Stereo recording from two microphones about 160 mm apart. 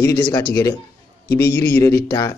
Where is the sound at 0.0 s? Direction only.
20° left (ahead or behind).